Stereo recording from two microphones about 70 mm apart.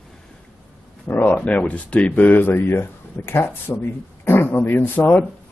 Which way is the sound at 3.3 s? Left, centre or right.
Left.